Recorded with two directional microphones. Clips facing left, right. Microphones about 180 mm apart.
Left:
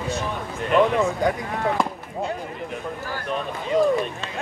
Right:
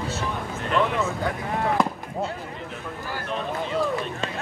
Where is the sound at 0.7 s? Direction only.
15° left (ahead or behind).